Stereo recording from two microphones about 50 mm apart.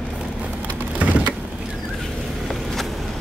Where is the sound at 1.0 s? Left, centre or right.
Right.